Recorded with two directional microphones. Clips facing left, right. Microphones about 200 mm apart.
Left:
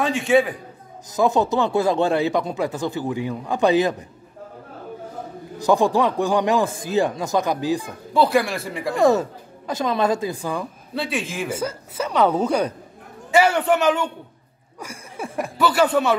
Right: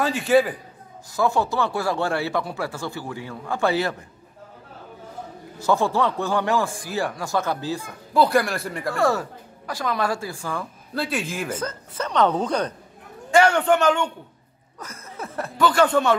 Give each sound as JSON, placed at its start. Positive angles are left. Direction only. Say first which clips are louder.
{"t": 0.0, "sound": "speech", "louder": "left 1 dB", "side_deg": -5}
{"t": 1.1, "sound": "speech", "louder": "left 3 dB", "side_deg": 20}
{"t": 5.6, "sound": "speech", "louder": "left 3 dB", "side_deg": 15}
{"t": 8.1, "sound": "speech", "louder": "left 1 dB", "side_deg": 0}
{"t": 8.9, "sound": "speech", "louder": "left 6 dB", "side_deg": 20}
{"t": 11.0, "sound": "speech", "louder": "left 1 dB", "side_deg": 0}